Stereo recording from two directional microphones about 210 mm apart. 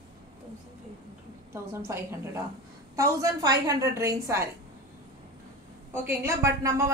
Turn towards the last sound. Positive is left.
turn(degrees=-15)  # may be behind; listen again after turning